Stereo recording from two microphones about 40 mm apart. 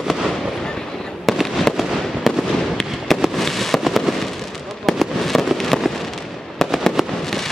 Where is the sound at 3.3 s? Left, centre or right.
Centre.